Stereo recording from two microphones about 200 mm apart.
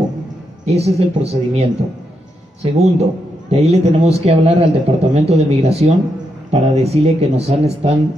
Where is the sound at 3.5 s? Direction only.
30° right (ahead or behind).